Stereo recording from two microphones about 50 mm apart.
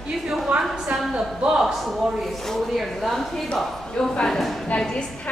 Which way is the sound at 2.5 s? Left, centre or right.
Centre.